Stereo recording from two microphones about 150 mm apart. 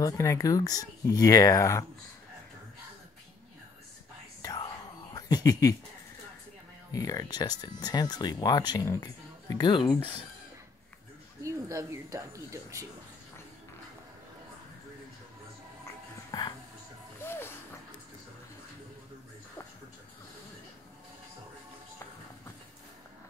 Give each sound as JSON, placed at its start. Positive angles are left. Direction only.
{"t": 0.0, "sound": "speech", "side_deg": 20}
{"t": 4.4, "sound": "whispering", "side_deg": 25}
{"t": 5.1, "sound": "speech", "side_deg": 25}
{"t": 6.9, "sound": "speech", "side_deg": 25}
{"t": 11.4, "sound": "speech", "side_deg": -20}
{"t": 16.3, "sound": "a sound", "side_deg": 25}
{"t": 17.2, "sound": "music", "side_deg": 15}